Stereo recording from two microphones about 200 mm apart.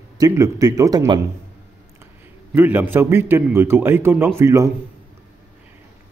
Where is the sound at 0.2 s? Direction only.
15° right (ahead or behind).